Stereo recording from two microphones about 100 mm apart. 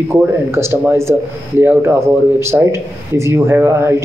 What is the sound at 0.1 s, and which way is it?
Speech, 25° right (ahead or behind).